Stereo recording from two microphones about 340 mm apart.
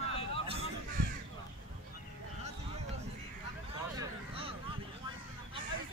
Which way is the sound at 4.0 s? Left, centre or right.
Centre.